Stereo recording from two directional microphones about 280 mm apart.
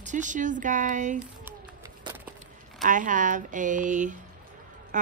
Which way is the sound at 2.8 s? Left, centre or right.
Right.